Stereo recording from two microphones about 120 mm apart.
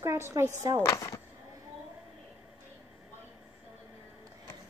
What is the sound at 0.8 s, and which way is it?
Speech, 25° left (ahead or behind).